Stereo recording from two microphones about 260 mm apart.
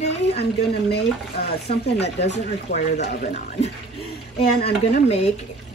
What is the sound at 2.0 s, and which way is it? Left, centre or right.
Speech, left.